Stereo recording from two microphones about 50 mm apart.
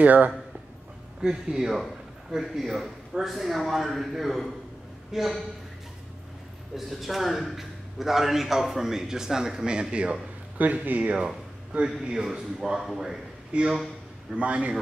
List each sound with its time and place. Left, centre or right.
0.0 s speech: right
1.2 s a man's voice: centre
2.3 s a man's voice: centre
6.7 s a man's voice: centre
10.6 s speech: right
11.7 s a man's voice: centre
13.5 s a man's voice: right